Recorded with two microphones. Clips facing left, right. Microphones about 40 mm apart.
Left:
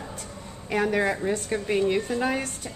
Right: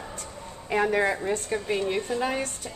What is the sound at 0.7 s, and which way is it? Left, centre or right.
Speech, centre.